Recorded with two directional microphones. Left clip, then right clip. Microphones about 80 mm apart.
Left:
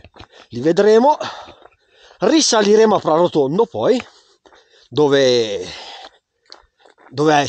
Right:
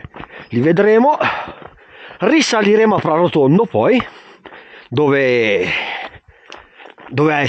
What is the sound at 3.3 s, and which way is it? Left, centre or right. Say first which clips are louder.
Speech: right 2 dB; right.